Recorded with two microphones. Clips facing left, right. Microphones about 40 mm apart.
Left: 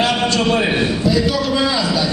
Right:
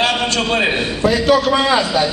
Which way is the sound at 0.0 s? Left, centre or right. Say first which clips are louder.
Left 1 dB; right.